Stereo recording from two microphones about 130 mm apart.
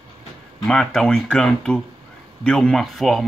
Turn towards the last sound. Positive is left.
turn(degrees=0)  # may be behind; listen again after turning